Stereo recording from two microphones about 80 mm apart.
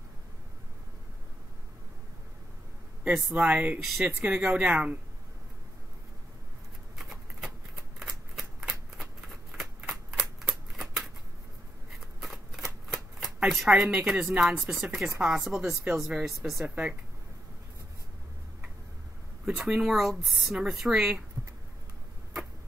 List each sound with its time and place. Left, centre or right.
3.1 s speech: centre
7.0 s a sound: centre
8.0 s shuffling cards: centre
8.9 s a sound: centre
12.2 s shuffling cards: centre
13.5 s speech: centre
14.2 s speech: centre
16.5 s speech: centre
19.5 s speech: centre